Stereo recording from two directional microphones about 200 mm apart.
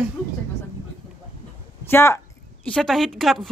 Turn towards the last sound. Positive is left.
turn(degrees=0)  # may be behind; listen again after turning